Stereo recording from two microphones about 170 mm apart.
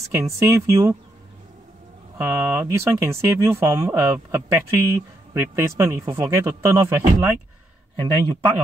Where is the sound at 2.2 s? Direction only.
15° right (ahead or behind).